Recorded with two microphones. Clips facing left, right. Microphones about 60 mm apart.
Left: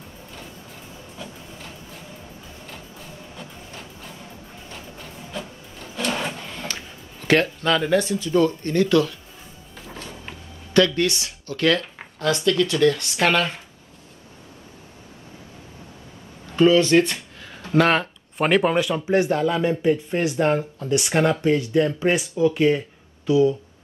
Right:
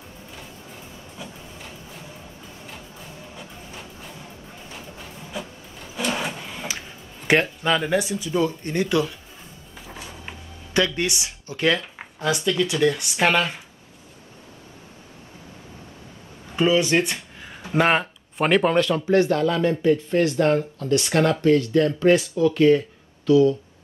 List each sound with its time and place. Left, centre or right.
1.1 s vehicle: centre
3.3 s music: centre
4.6 s printer: centre
7.2 s a sound: centre
7.6 s speech: centre
9.8 s music: centre
11.0 s speech: centre
16.5 s a sound: centre
17.7 s speech: centre
18.4 s speech: centre